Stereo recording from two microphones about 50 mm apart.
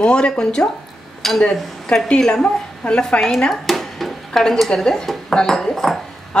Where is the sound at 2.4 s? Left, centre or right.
Left.